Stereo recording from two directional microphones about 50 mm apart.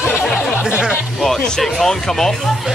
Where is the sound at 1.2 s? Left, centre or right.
Centre.